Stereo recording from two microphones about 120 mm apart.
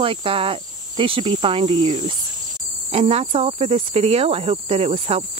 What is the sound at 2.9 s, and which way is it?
Cricket, 55° right (ahead or behind).